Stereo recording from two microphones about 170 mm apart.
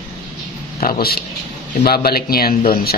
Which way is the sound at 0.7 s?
55° left (ahead or behind).